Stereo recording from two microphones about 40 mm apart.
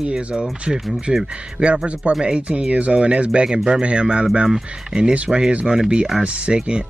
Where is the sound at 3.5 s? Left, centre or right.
Centre.